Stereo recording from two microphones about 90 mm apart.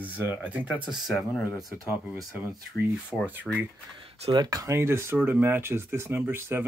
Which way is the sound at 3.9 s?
60° right (ahead or behind).